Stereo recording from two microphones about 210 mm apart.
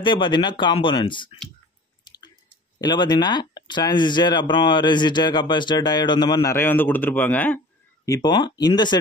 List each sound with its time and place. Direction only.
0.0 s speech: 25° left (ahead or behind)
2.0 s drip: 20° left (ahead or behind)
2.8 s speech: 20° left (ahead or behind)